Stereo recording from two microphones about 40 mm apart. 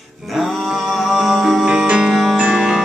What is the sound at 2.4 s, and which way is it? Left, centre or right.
Music, right.